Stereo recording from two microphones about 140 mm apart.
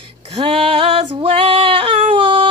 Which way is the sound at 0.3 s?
50° right (ahead or behind).